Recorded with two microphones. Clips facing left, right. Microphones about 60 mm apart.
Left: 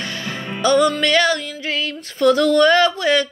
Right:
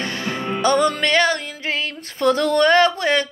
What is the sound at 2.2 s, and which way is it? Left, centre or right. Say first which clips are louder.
Speech: left 3 dB; right.